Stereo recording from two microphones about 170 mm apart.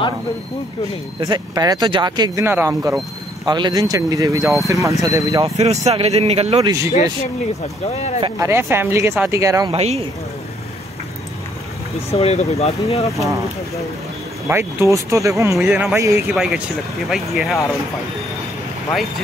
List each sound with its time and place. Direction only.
1.2 s speech: 20° right (ahead or behind)
3.4 s speech: 25° right (ahead or behind)
5.6 s speech: 40° right (ahead or behind)
7.9 s speech: 40° left (ahead or behind)
8.4 s speech: 15° right (ahead or behind)
9.7 s speech: 35° right (ahead or behind)
12.1 s speech: 40° left (ahead or behind)
14.5 s speech: 15° right (ahead or behind)
16.3 s speech: centre (ahead or behind)